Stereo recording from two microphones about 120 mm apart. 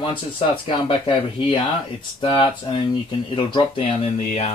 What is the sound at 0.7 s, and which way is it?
Speech, 45° left (ahead or behind).